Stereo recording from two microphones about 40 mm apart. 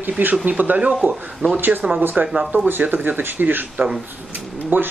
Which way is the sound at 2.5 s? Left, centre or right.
Right.